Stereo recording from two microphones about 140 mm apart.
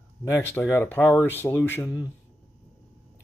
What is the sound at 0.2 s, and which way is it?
Speech, 20° left (ahead or behind).